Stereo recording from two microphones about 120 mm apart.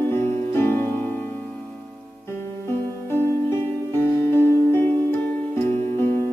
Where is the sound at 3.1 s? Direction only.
20° left (ahead or behind).